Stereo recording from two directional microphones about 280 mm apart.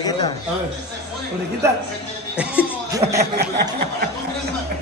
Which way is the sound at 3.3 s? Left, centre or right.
Right.